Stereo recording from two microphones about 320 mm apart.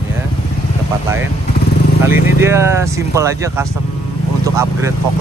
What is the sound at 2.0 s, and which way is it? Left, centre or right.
Speech, centre.